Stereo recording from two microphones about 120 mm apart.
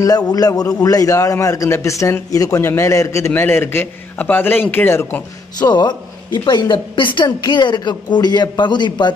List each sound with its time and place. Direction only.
0.3 s a man's voice: 30° left (ahead or behind)
5.6 s speech: 35° left (ahead or behind)